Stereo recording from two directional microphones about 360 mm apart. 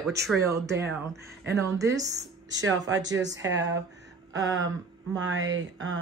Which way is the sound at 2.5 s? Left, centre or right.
Right.